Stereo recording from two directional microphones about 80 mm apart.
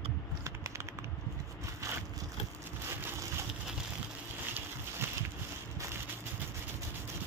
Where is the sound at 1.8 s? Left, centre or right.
Right.